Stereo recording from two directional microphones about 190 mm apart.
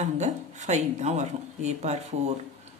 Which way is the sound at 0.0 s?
35° right (ahead or behind).